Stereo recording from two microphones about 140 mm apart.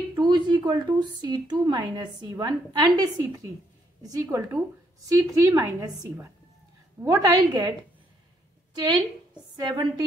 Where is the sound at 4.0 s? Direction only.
25° right (ahead or behind).